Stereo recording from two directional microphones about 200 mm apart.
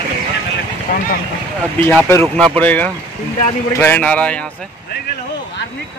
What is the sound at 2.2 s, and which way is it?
Speech, centre (ahead or behind).